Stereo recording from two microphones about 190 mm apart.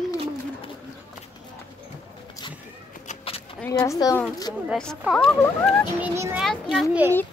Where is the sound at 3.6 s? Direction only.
15° left (ahead or behind).